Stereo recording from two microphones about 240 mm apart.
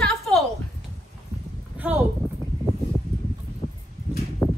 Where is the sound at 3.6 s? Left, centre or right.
Left.